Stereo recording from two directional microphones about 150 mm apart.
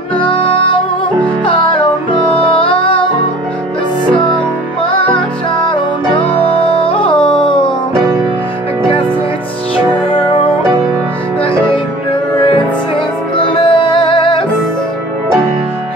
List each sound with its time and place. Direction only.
0.2 s music: 35° left (ahead or behind)
6.1 s music: 10° left (ahead or behind)
6.6 s music: 40° left (ahead or behind)
7.2 s a sound: 5° left (ahead or behind)
9.8 s music: 35° left (ahead or behind)
13.5 s music: 35° left (ahead or behind)